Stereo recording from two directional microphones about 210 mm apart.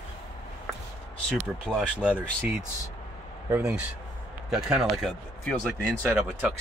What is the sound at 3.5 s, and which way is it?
Speech, 10° right (ahead or behind).